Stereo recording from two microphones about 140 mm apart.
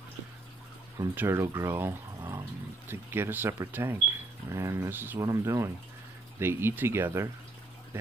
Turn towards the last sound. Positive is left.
turn(degrees=-20)  # may be behind; listen again after turning